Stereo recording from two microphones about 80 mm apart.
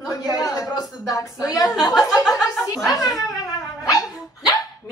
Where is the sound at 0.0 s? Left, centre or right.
Left.